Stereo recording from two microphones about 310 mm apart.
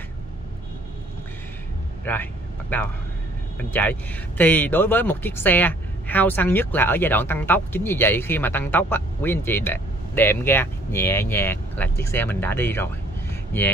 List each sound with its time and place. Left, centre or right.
2.7 s speech: centre